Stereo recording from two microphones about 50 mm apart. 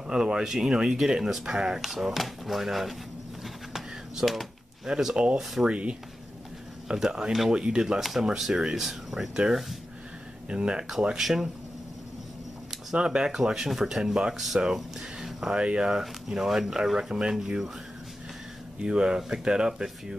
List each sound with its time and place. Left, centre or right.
0.0 s speech: centre
3.4 s a sound: centre
4.8 s speech: centre
5.4 s speech: centre
5.7 s speech: right; by 9.4 s centre
10.5 s speech: centre
11.1 s speech: centre
12.9 s speech: centre
15.5 s speech: centre
18.8 s speech: centre